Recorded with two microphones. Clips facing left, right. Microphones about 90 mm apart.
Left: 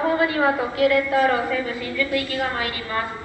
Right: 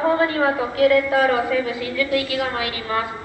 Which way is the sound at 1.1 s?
80° right.